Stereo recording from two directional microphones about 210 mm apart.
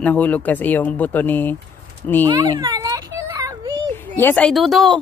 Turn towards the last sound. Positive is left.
turn(degrees=0)  # may be behind; listen again after turning